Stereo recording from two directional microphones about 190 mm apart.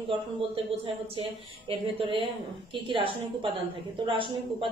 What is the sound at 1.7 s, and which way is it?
A woman's voice, 30° right (ahead or behind).